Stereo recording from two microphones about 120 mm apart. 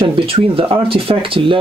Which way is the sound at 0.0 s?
50° right (ahead or behind).